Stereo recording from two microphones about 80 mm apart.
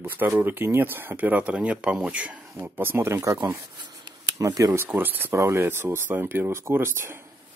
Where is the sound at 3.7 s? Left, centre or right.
Right.